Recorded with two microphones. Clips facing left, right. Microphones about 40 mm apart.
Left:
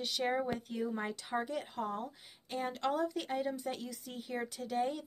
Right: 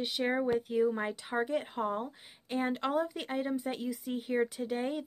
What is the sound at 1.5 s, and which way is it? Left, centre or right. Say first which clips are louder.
Speech: right 5 dB; right.